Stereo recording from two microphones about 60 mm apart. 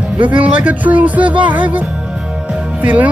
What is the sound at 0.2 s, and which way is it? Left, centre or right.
Speech, right.